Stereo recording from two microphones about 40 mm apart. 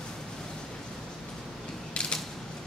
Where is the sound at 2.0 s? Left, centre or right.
Centre.